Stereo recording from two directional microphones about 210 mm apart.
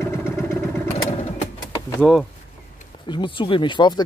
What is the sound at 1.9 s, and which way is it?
Speech, 5° left (ahead or behind).